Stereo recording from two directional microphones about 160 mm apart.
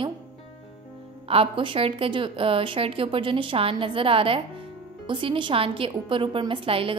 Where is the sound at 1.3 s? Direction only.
35° right (ahead or behind).